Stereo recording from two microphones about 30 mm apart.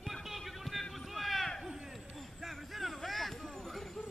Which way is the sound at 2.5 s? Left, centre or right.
Centre.